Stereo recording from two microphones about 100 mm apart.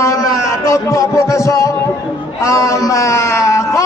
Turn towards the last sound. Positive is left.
turn(degrees=30)  # may be behind; listen again after turning